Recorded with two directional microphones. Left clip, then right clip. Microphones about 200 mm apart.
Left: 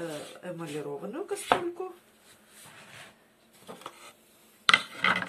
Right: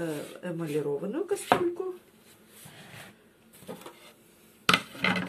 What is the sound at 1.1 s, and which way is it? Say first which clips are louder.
Speech: right 4 dB; 20° left (ahead or behind).